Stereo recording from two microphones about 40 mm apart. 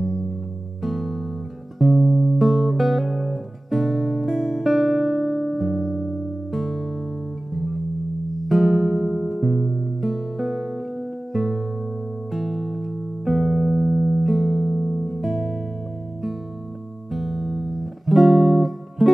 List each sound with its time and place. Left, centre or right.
0.8 s music: centre
17.1 s music: centre